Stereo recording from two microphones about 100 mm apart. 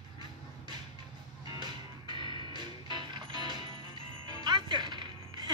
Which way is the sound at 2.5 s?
50° right (ahead or behind).